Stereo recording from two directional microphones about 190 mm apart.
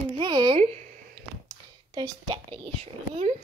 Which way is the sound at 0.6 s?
35° right (ahead or behind).